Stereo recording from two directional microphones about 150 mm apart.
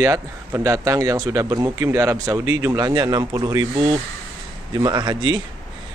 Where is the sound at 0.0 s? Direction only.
20° right (ahead or behind).